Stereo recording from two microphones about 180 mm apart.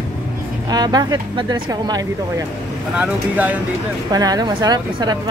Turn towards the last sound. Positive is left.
turn(degrees=-25)  # may be behind; listen again after turning